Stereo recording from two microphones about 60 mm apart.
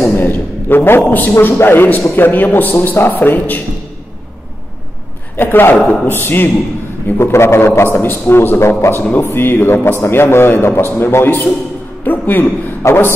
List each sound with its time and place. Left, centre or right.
0.0 s a sound: left
1.6 s a man's voice: left
5.3 s a man's voice: left
7.2 s a man's voice: left